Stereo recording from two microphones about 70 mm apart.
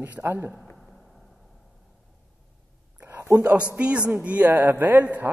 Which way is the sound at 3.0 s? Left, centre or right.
Right.